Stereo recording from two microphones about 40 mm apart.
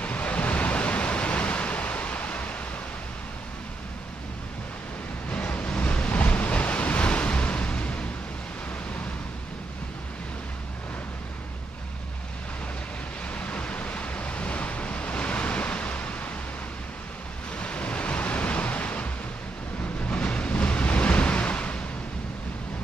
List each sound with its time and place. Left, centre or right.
0.0 s waves: left
5.3 s waves: left
13.3 s waves: left
17.6 s waves: left
20.1 s waves: left